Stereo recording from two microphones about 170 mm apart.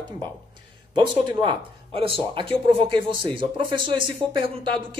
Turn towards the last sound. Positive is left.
turn(degrees=-30)  # may be behind; listen again after turning